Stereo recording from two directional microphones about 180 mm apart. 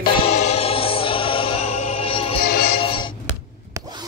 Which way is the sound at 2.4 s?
60° left (ahead or behind).